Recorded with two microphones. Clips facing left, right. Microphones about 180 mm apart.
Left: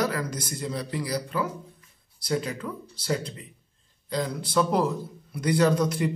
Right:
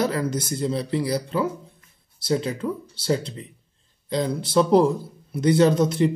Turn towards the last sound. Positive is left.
turn(degrees=-25)  # may be behind; listen again after turning